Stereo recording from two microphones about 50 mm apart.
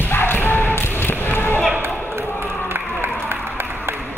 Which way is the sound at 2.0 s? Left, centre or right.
Right.